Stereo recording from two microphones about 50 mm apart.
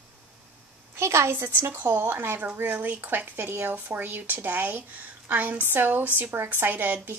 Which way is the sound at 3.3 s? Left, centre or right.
Right.